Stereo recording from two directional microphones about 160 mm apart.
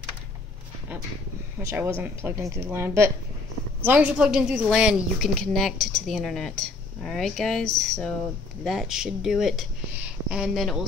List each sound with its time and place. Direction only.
1.6 s a woman's voice: 15° right (ahead or behind); by 10.9 s centre (ahead or behind)